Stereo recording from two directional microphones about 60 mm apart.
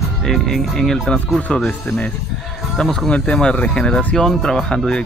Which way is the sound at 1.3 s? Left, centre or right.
Centre.